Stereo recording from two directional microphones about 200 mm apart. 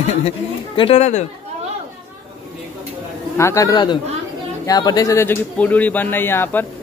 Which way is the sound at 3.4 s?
15° left (ahead or behind).